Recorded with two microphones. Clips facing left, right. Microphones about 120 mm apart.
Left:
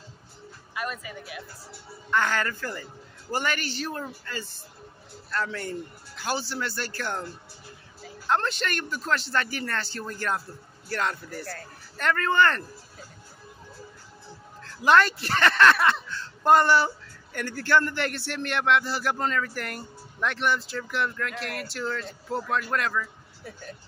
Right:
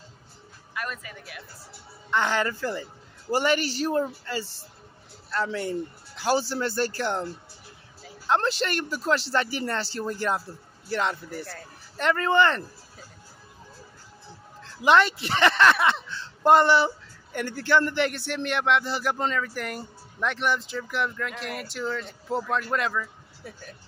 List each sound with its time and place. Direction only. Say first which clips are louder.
0.7 s speech: left 1 dB; 5° left (ahead or behind)
2.0 s speech: right 1 dB; 20° right (ahead or behind)
3.3 s speech: right 5 dB; 30° right (ahead or behind)
3.9 s a man's voice: right 8 dB; 25° right (ahead or behind)
6.2 s speech: right 5 dB; 40° right (ahead or behind)
7.0 s speech: right 4 dB; 25° right (ahead or behind)
8.3 s speech: right 2 dB; 30° right (ahead or behind)
8.8 s speech: right 4 dB; 10° right (ahead or behind)
9.1 s speech: right 2 dB; 30° right (ahead or behind)
14.6 s a sound: even; 20° right (ahead or behind)
15.2 s speech: even; 20° right (ahead or behind)
22.4 s speech: even; centre (ahead or behind)